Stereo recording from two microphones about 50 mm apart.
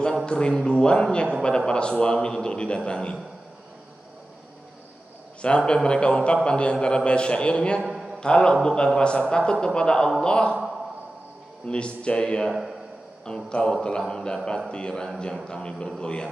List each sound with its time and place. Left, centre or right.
0.2 s a man's voice: centre
5.7 s a man's voice: centre
7.8 s a sound: centre
8.2 s a man's voice: centre
11.6 s a man's voice: left
13.5 s a man's voice: centre